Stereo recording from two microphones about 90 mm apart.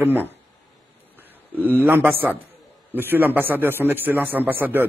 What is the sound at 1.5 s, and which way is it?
A man's voice, 20° right (ahead or behind).